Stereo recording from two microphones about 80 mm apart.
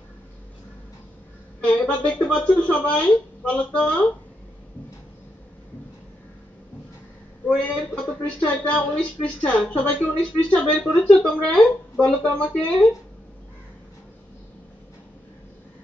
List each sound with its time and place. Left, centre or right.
1.6 s speech: centre
7.4 s speech: centre